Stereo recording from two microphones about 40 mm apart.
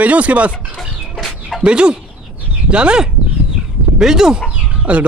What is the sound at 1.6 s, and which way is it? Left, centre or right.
A man's voice, right.